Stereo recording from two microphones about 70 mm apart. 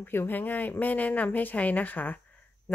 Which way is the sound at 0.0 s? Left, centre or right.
Left.